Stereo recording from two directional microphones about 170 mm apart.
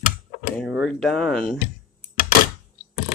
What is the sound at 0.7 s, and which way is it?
Speech, centre (ahead or behind).